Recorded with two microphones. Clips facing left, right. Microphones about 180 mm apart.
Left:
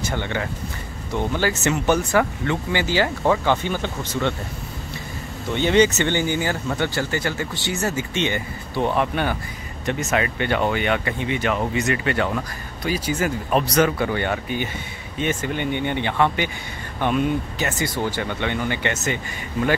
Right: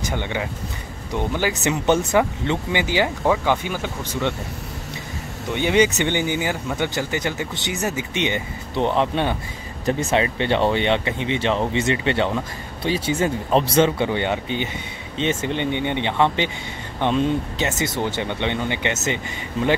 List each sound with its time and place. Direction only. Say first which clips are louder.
0.0 s speech: even; 15° right (ahead or behind)
5.5 s speech: left 1 dB; 10° right (ahead or behind)